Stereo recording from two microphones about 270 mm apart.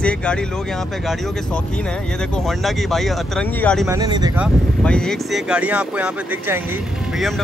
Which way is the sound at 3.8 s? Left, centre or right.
Centre.